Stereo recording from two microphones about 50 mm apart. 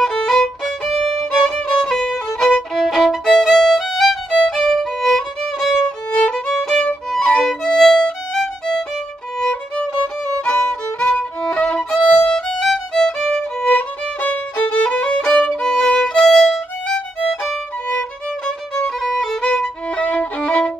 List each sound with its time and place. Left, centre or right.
0.0 s violin: centre
5.9 s music: centre
7.1 s violin: centre
10.4 s violin: centre
12.3 s violin: centre
12.9 s music: centre
13.7 s violin: left; by 16.4 s centre
18.9 s violin: centre
20.0 s violin: left